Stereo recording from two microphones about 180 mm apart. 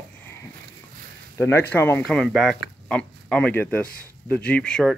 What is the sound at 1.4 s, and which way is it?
Speech, 15° left (ahead or behind).